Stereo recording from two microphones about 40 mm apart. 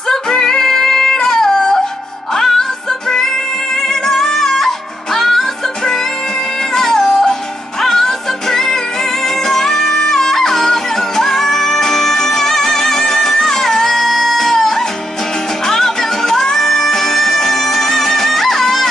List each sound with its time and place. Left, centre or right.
0.1 s music: centre
3.9 s music: centre